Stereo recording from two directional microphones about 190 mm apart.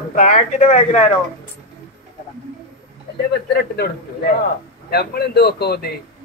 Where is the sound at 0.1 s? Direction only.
40° left (ahead or behind).